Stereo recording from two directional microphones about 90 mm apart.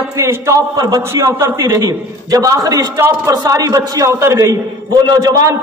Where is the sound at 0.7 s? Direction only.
45° right (ahead or behind).